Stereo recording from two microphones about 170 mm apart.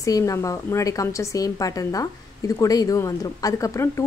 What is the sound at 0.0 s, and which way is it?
Speech, 20° left (ahead or behind).